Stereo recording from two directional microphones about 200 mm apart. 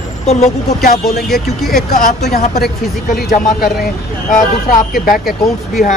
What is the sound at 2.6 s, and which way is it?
Speech, 50° left (ahead or behind).